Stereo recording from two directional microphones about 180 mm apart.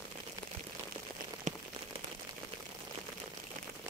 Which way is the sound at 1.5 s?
45° right (ahead or behind).